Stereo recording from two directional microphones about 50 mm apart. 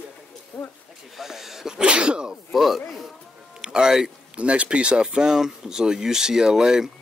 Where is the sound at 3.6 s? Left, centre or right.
Centre.